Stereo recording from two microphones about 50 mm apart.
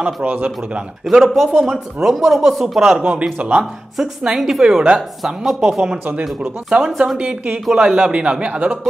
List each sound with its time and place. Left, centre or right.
0.0 s a man's voice: right
1.2 s speech: centre
3.0 s a man's voice: right
3.9 s a woman's voice: centre
5.9 s a man's voice: right